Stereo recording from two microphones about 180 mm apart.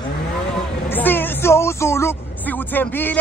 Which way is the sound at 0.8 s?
10° left (ahead or behind).